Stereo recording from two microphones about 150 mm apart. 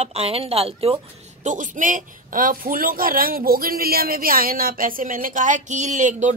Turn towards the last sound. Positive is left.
turn(degrees=-55)  # may be behind; listen again after turning